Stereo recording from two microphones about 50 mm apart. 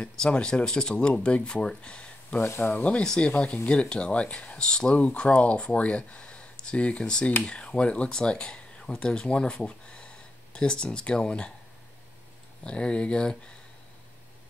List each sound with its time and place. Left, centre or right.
0.1 s speech: centre
2.6 s speech: left
2.9 s speech: centre
12.6 s speech: left